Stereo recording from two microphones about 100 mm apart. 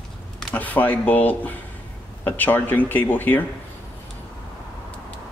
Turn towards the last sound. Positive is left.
turn(degrees=20)  # may be behind; listen again after turning